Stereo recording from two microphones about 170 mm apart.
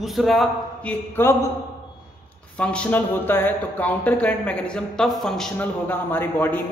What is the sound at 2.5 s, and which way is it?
Speech, 5° left (ahead or behind).